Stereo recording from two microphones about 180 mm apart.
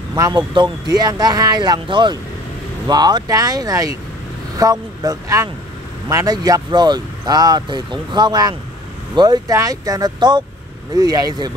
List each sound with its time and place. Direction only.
0.1 s speech: 20° right (ahead or behind)